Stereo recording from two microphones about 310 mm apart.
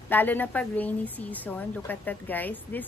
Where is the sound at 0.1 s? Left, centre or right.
Centre.